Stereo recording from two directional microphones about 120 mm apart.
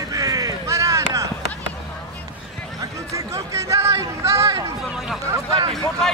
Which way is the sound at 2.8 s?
25° right (ahead or behind).